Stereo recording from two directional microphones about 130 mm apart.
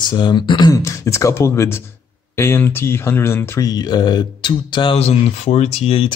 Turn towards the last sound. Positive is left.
turn(degrees=45)  # may be behind; listen again after turning